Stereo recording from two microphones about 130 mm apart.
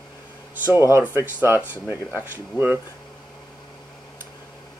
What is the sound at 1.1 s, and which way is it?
Speech, 15° right (ahead or behind).